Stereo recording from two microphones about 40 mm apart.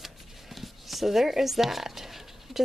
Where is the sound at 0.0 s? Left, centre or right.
Centre.